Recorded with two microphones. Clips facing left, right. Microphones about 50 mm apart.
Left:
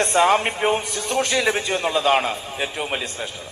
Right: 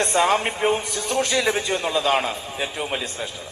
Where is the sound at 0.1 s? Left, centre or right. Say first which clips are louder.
Left 4 dB; centre.